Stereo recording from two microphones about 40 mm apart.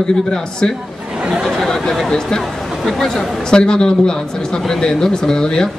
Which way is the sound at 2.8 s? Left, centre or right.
Centre.